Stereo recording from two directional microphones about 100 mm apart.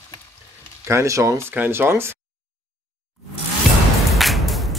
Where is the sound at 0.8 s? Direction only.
30° right (ahead or behind).